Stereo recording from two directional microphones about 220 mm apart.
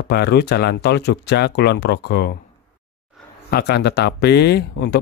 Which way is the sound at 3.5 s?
50° left (ahead or behind).